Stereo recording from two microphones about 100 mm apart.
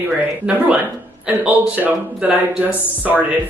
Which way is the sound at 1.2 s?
10° right (ahead or behind).